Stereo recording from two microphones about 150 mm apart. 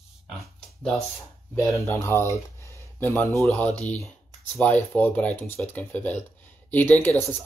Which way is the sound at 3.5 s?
10° left (ahead or behind).